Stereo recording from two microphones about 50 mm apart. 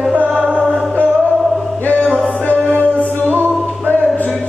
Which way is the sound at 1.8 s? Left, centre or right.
Left.